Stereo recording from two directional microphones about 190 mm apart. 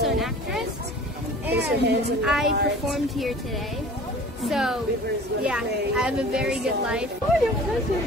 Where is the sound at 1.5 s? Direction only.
60° right (ahead or behind).